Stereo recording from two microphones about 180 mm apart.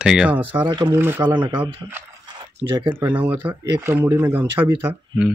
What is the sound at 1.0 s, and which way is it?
Speech, 10° right (ahead or behind).